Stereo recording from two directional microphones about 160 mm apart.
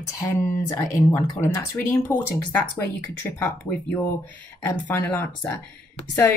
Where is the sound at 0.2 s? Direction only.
20° left (ahead or behind).